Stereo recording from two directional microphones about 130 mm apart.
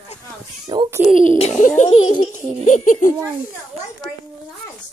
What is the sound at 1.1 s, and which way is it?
Speech, 75° left (ahead or behind).